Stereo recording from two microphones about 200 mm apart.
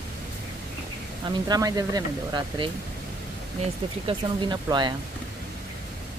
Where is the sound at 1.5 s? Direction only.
20° right (ahead or behind).